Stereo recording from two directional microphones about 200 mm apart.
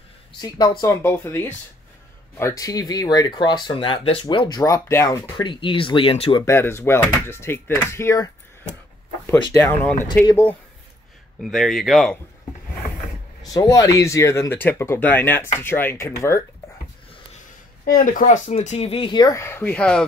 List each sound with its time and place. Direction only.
0.4 s speech: 20° left (ahead or behind)
1.0 s speech: 10° left (ahead or behind); by 6.4 s 30° left (ahead or behind)
6.4 s speech: 10° left (ahead or behind)
11.5 s speech: centre (ahead or behind)
13.4 s speech: 20° left (ahead or behind)
17.8 s speech: 45° left (ahead or behind); by 20.1 s 5° left (ahead or behind)